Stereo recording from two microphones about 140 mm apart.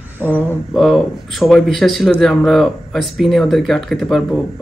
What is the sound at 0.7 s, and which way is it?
Speech, centre (ahead or behind).